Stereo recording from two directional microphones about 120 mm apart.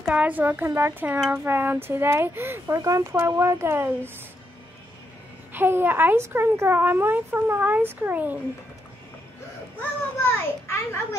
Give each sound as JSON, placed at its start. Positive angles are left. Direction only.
{"t": 0.0, "sound": "speech", "side_deg": -10}
{"t": 5.5, "sound": "speech", "side_deg": -20}
{"t": 9.8, "sound": "a sound", "side_deg": 15}